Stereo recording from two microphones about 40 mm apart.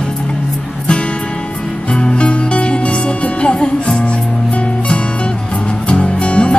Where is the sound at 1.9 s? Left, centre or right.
Left.